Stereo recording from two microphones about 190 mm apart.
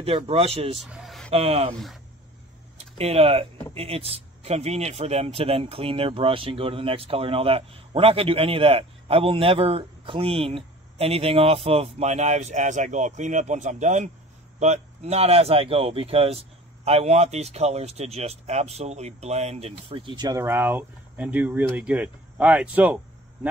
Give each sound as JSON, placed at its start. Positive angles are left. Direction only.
{"t": 0.0, "sound": "speech", "side_deg": -30}
{"t": 0.8, "sound": "a sound", "side_deg": -5}
{"t": 1.3, "sound": "speech", "side_deg": -30}
{"t": 2.8, "sound": "speech", "side_deg": -30}